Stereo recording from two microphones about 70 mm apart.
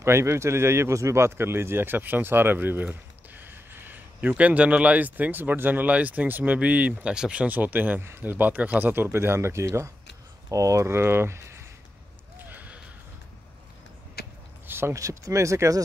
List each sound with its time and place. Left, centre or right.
0.0 s speech: right
12.4 s a sound: right
14.7 s speech: right